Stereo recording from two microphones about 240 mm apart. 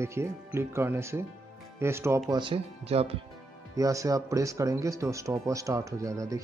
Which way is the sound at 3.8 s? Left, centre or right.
Centre.